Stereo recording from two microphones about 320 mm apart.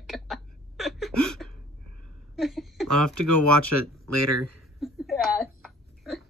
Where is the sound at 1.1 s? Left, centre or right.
Right.